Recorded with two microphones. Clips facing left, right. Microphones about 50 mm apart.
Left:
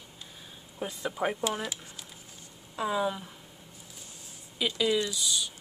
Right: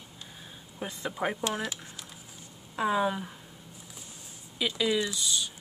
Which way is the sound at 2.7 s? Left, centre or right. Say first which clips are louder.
Right 2 dB; right.